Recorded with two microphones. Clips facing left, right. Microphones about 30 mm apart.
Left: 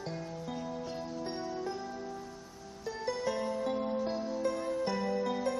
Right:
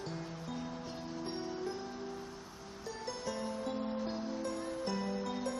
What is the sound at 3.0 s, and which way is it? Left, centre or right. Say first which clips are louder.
Music: left 7 dB; centre.